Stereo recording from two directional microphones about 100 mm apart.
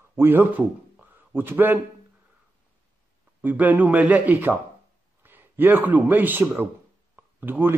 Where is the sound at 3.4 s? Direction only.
15° right (ahead or behind).